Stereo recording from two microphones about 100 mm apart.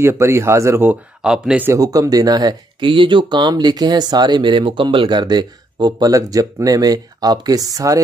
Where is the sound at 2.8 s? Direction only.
55° right (ahead or behind).